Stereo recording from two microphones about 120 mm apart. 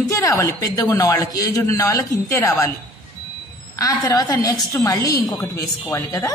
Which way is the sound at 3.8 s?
30° left (ahead or behind).